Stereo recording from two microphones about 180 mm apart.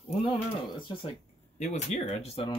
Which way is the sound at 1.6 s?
40° left (ahead or behind).